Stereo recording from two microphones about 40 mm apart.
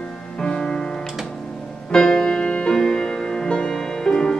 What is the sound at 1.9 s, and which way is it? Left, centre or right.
Music, centre.